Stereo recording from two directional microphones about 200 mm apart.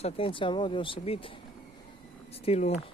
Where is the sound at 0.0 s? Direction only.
25° left (ahead or behind).